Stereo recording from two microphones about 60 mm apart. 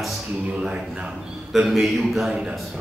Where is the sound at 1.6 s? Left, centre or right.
Centre.